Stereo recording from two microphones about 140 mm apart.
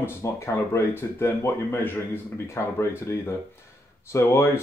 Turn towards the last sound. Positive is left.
turn(degrees=20)  # may be behind; listen again after turning